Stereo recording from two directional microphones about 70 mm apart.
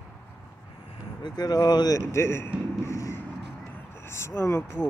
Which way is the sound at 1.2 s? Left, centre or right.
Left.